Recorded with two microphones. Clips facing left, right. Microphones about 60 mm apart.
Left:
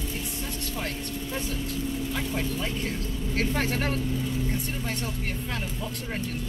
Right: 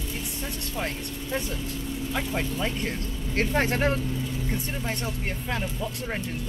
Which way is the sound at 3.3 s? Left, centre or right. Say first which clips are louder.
Right 3 dB; right.